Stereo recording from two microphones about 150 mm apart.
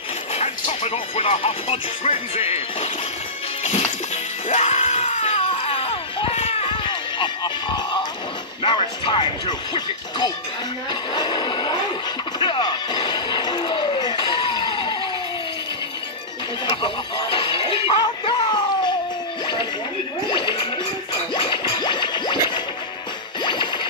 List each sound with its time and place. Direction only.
0.3 s speech: 45° left (ahead or behind)
4.5 s screaming: 45° left (ahead or behind); by 8.0 s 30° left (ahead or behind)
8.6 s speech: 35° left (ahead or behind)
10.9 s a sound: 30° left (ahead or behind)
12.4 s music: 30° left (ahead or behind)
16.8 s music: 35° left (ahead or behind)
20.2 s music: 30° left (ahead or behind)